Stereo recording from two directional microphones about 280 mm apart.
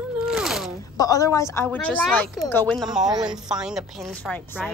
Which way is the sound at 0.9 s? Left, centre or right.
Centre.